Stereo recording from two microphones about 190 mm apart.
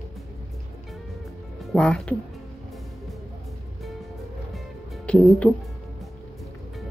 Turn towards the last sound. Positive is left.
turn(degrees=5)  # may be behind; listen again after turning